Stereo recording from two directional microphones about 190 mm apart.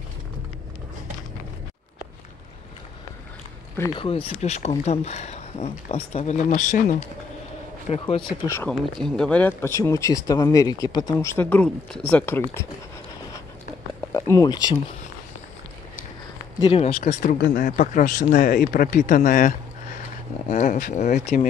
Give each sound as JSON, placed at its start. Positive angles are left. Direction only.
{"t": 3.7, "sound": "speech", "side_deg": 15}
{"t": 4.0, "sound": "speech", "side_deg": 30}
{"t": 8.5, "sound": "speech", "side_deg": 10}
{"t": 11.3, "sound": "speech", "side_deg": 5}
{"t": 14.1, "sound": "speech", "side_deg": 15}
{"t": 16.5, "sound": "speech", "side_deg": 25}
{"t": 17.0, "sound": "speech", "side_deg": 45}